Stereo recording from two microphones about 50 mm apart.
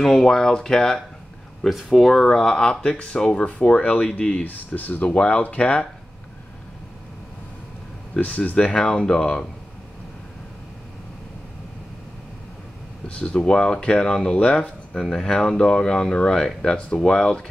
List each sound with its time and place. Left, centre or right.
0.0 s speech: centre
1.6 s speech: centre; by 4.5 s left
4.5 s speech: left
5.0 s speech: left
8.1 s speech: left
13.2 s speech: centre
15.0 s speech: centre